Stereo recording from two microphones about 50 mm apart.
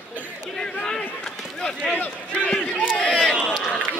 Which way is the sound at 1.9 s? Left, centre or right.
Left.